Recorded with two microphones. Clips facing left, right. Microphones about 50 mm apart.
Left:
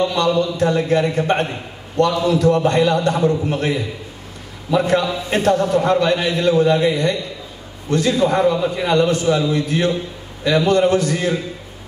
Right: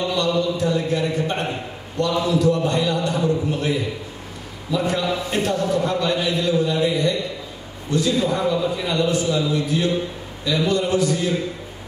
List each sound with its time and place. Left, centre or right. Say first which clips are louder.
0.0 s a man's voice: left 4 dB; left